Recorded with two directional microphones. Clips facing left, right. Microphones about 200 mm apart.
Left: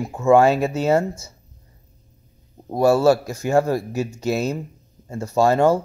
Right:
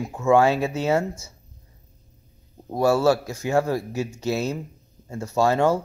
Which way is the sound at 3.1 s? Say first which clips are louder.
Left 3 dB; 45° left (ahead or behind).